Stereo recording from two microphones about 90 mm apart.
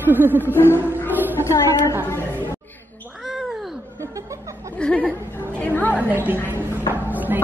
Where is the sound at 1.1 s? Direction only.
20° right (ahead or behind).